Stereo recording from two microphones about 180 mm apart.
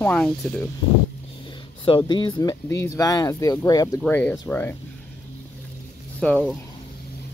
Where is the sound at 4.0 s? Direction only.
10° left (ahead or behind).